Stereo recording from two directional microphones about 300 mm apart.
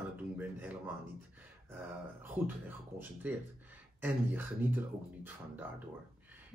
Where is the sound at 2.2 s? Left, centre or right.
Centre.